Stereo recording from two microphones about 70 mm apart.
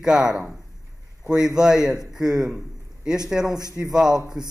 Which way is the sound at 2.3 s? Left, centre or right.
Centre.